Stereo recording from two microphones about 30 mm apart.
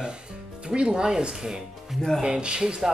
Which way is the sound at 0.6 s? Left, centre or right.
Right.